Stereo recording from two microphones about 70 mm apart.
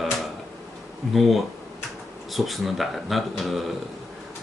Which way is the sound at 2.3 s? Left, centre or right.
Centre.